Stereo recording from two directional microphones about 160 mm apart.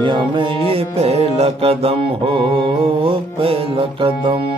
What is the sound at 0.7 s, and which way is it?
Mantra, 40° right (ahead or behind).